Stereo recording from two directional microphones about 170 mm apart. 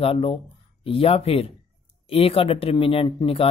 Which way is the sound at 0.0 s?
30° left (ahead or behind).